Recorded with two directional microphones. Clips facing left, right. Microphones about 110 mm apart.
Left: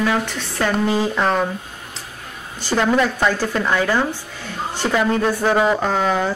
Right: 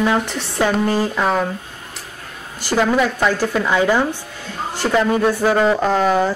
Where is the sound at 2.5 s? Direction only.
10° right (ahead or behind).